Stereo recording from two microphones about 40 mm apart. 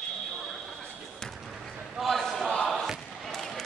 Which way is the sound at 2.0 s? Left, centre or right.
Centre.